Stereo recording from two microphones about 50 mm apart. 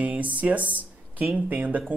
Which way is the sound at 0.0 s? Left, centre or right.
Right.